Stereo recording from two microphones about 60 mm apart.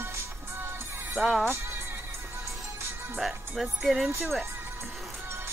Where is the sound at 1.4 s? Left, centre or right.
Right.